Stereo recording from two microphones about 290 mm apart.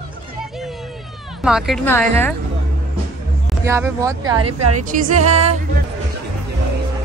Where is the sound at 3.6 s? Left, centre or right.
Centre.